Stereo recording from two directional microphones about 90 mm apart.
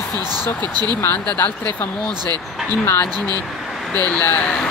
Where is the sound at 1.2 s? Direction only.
15° left (ahead or behind).